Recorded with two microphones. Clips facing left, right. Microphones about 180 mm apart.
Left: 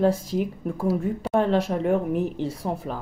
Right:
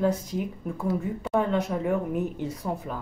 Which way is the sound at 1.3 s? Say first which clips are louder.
Left 3 dB; 90° left.